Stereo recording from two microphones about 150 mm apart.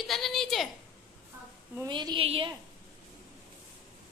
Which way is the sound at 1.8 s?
30° right (ahead or behind).